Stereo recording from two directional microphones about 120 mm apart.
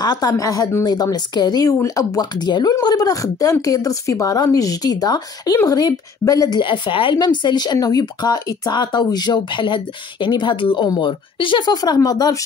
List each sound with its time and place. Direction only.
0.0 s speech: 35° left (ahead or behind)
6.6 s speech: 45° left (ahead or behind)